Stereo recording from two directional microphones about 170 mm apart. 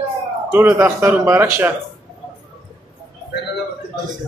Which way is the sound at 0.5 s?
10° right (ahead or behind).